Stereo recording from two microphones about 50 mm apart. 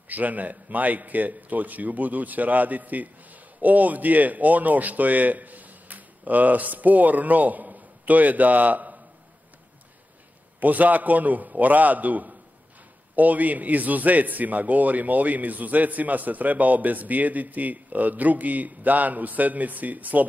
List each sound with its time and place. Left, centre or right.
0.1 s a man's voice: right
10.6 s a man's voice: right